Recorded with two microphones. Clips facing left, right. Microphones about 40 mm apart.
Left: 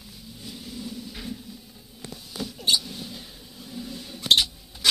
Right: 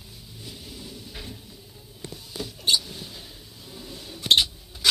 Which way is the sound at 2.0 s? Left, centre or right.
Left.